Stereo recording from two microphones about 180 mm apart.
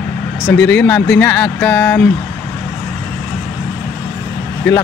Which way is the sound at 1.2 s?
15° left (ahead or behind).